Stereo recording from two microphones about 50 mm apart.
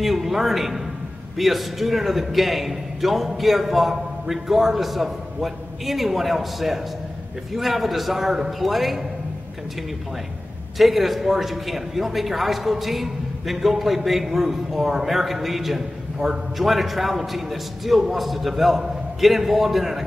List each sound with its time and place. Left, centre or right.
0.0 s a man's voice: centre
10.8 s a man's voice: centre